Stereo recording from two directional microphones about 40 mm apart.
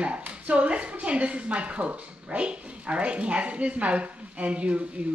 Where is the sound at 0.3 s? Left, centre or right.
Right.